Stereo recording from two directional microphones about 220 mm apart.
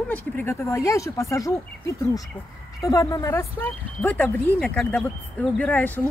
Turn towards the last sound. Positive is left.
turn(degrees=5)  # may be behind; listen again after turning